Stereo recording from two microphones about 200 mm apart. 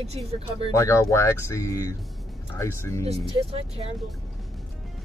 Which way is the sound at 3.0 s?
30° right (ahead or behind).